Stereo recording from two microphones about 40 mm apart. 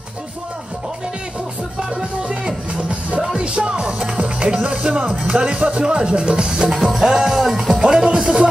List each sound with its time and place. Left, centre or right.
1.8 s music: centre
5.7 s speech: right
6.7 s music: centre
7.8 s music: centre